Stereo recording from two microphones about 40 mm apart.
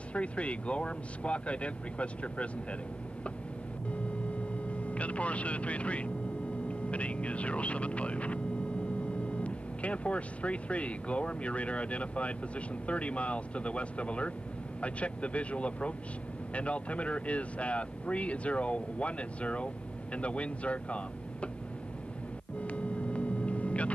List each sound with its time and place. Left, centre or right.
0.1 s speech: left
3.9 s a sound: left
6.7 s speech: left
22.6 s vehicle: left